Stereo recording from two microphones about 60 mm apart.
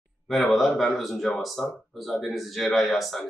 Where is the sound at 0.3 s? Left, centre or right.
Centre.